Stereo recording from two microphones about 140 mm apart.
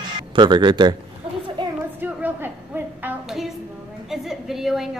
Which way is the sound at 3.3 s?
5° right (ahead or behind).